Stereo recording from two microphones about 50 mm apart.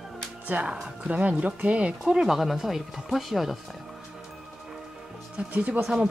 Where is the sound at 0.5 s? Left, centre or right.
Right.